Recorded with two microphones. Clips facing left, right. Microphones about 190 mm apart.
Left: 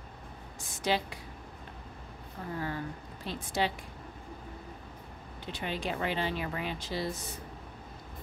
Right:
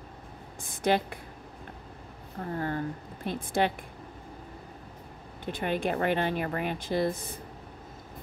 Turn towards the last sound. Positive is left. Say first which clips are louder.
# right 7 dB
turn(degrees=-55)  # may be behind; listen again after turning